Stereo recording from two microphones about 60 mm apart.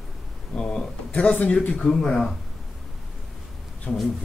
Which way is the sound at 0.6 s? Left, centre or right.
Centre.